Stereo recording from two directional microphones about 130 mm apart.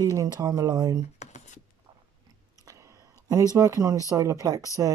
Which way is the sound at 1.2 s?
65° left (ahead or behind).